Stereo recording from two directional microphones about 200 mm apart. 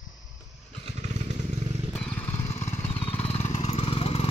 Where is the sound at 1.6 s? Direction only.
25° right (ahead or behind).